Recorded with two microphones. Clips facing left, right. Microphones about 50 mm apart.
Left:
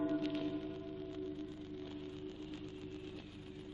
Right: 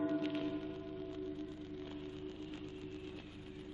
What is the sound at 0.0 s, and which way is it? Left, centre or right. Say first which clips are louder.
Music: even; centre.